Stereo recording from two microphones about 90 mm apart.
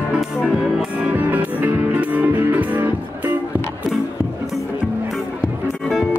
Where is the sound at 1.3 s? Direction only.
20° right (ahead or behind).